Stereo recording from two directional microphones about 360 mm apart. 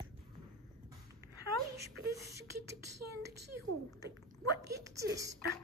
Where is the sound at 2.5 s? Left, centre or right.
Right.